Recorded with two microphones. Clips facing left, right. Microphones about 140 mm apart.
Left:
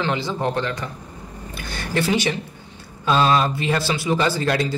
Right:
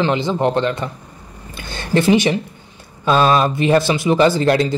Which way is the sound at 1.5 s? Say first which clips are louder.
Right 6 dB; 25° right (ahead or behind).